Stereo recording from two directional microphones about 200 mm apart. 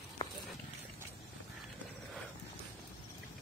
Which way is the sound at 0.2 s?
20° left (ahead or behind).